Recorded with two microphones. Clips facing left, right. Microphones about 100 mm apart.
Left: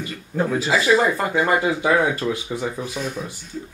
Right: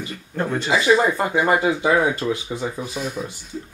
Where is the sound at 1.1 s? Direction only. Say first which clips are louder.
Right 1 dB; 20° right (ahead or behind).